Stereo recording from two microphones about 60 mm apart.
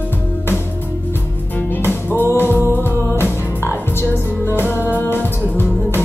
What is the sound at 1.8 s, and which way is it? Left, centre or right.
Music, left.